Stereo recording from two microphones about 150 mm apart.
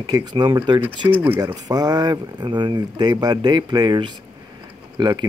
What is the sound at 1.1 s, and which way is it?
Speech, 15° right (ahead or behind).